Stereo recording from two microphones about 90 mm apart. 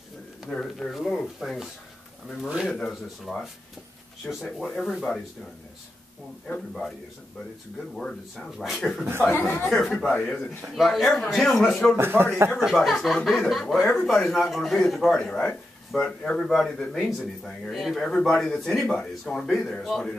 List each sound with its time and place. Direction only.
0.5 s speech: 5° left (ahead or behind)
2.7 s speech: 5° left (ahead or behind)
4.5 s speech: 5° left (ahead or behind)
7.9 s speech: 5° left (ahead or behind)
10.7 s speech: centre (ahead or behind)
12.0 s a man's voice: 25° right (ahead or behind)
12.6 s speech: centre (ahead or behind); by 16.4 s 15° left (ahead or behind)
16.4 s speech: 5° left (ahead or behind)